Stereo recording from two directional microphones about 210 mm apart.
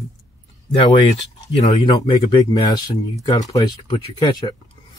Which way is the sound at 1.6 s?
20° left (ahead or behind).